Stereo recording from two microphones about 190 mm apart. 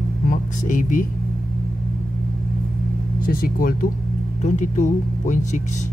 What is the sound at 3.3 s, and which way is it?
Speech, 50° left (ahead or behind).